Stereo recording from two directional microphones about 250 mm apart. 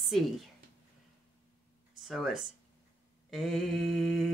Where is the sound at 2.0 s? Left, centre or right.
Centre.